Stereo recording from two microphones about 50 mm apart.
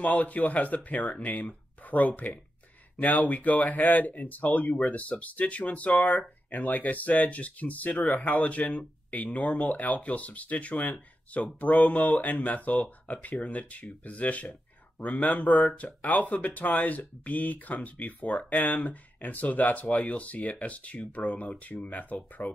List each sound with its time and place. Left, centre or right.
0.0 s speech: left